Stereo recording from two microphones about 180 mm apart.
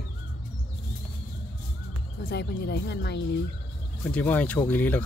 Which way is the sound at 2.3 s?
65° left (ahead or behind).